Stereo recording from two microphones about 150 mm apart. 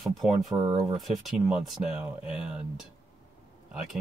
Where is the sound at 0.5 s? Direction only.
25° right (ahead or behind).